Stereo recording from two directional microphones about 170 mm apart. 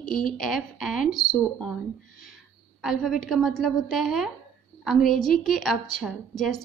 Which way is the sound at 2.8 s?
Centre (ahead or behind).